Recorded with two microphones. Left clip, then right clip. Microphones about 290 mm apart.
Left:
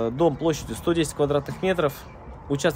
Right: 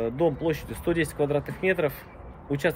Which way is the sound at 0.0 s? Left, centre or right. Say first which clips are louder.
Left 3 dB; centre.